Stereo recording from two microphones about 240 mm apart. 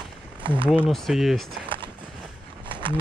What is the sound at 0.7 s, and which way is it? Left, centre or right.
Speech, centre.